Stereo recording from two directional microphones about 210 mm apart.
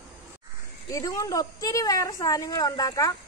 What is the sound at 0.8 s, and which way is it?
A woman's voice, 15° left (ahead or behind).